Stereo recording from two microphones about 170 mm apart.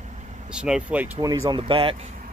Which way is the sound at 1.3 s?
25° right (ahead or behind).